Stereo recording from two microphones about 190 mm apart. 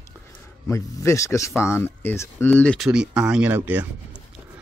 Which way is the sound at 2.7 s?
5° right (ahead or behind).